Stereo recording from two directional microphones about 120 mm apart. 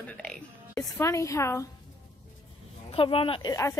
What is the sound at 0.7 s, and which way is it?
Speech, 25° left (ahead or behind).